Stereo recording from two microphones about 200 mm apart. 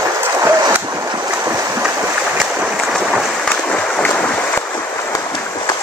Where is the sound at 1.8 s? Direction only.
5° right (ahead or behind); by 5.7 s 20° left (ahead or behind).